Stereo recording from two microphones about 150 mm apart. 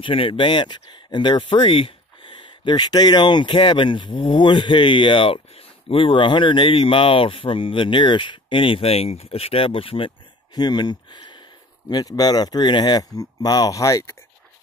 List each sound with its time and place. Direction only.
0.0 s speech: 35° left (ahead or behind)